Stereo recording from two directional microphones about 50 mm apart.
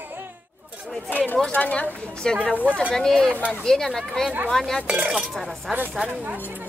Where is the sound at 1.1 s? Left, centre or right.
Left.